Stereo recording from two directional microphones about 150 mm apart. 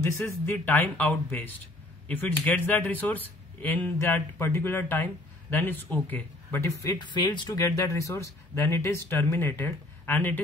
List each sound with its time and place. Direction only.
0.0 s speech: 15° left (ahead or behind)
7.0 s speech: 30° left (ahead or behind); by 10.4 s 10° left (ahead or behind)